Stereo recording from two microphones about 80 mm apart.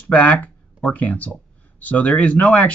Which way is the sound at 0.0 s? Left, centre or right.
Centre.